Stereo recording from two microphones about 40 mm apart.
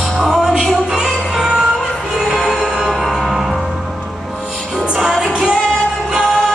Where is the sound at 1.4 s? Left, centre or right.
Right.